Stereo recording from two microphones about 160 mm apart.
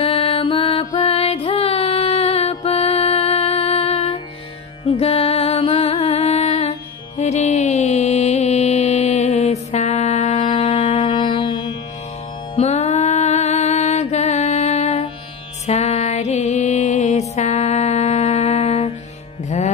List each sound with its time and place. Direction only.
0.0 s music: 35° left (ahead or behind)
12.5 s music: 40° left (ahead or behind)